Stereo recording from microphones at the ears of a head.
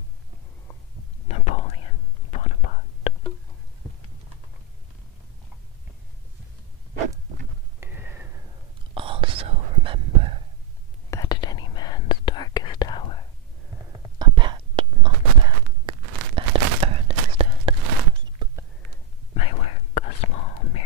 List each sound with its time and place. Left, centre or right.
1.2 s whispering: left
8.9 s whispering: right
11.1 s whispering: left
14.1 s whispering: right
19.3 s whispering: left